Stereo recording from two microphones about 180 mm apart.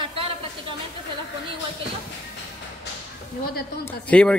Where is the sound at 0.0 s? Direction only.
30° right (ahead or behind).